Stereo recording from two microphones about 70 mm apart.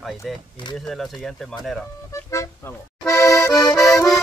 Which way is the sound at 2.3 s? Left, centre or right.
Left.